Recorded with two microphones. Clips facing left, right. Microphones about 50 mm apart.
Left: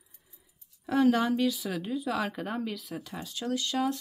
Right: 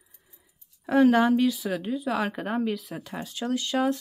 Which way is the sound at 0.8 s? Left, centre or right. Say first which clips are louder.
Right 5 dB; right.